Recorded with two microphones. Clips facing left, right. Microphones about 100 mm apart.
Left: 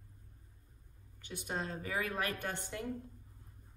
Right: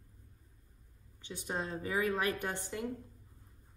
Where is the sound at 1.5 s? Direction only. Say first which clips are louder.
Right 2 dB; 20° right (ahead or behind).